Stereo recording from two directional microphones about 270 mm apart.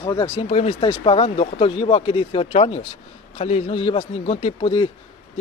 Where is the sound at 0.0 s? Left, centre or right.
Centre.